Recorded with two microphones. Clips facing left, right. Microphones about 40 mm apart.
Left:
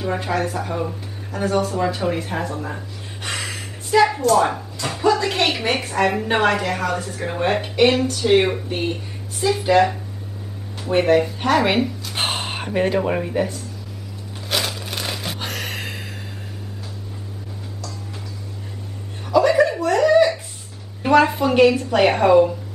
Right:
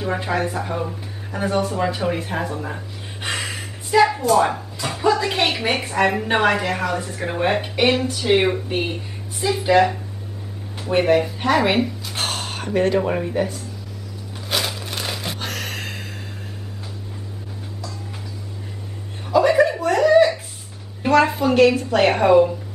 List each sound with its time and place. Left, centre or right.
0.0 s speech: centre
9.4 s a woman's voice: centre
12.2 s a sound: left
12.8 s speech: centre
14.5 s a sound: centre
19.3 s chuckle: centre
21.3 s a woman's voice: centre